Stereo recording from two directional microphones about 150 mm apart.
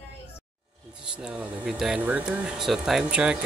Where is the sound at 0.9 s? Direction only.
5° right (ahead or behind).